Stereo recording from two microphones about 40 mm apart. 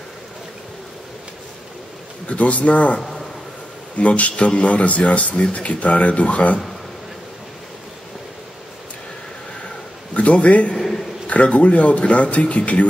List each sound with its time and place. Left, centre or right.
2.2 s speech: left
3.0 s a sound: centre
4.0 s speech: left
10.1 s a man's voice: left